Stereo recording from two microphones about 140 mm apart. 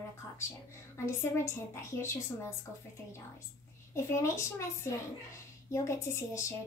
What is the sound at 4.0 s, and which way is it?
Speech, 20° left (ahead or behind).